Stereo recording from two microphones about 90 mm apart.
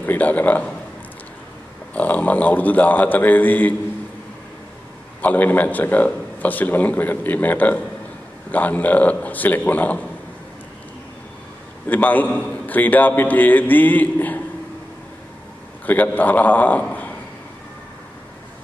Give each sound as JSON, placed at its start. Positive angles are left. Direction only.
{"t": 0.0, "sound": "a man's voice", "side_deg": 20}
{"t": 2.0, "sound": "a man's voice", "side_deg": 15}
{"t": 5.2, "sound": "a man's voice", "side_deg": 20}
{"t": 11.9, "sound": "a man's voice", "side_deg": 20}
{"t": 15.8, "sound": "a man's voice", "side_deg": 20}